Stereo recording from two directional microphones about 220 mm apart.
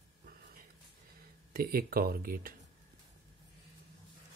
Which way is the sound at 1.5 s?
40° right (ahead or behind).